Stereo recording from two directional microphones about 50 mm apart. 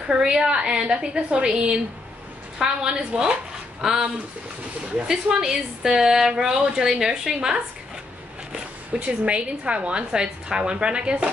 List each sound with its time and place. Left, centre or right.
0.1 s speech: centre
3.8 s speech: centre